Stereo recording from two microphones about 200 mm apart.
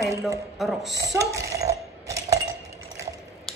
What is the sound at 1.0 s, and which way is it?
Coin, 15° right (ahead or behind).